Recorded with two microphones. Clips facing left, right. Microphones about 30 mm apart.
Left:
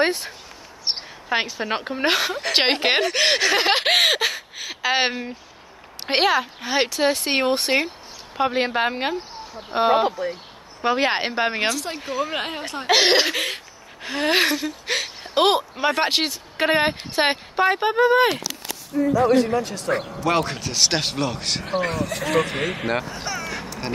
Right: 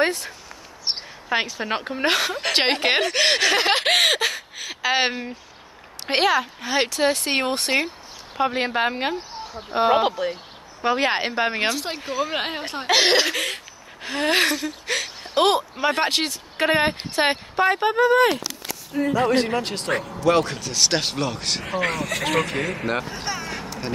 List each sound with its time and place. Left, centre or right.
0.0 s speech: left; by 9.9 s centre
10.0 s speech: right
10.8 s speech: centre
11.9 s speech: centre
12.8 s speech: centre
18.9 s speech: right
20.2 s speech: centre
21.6 s speech: right
22.6 s speech: left
23.0 s speech: centre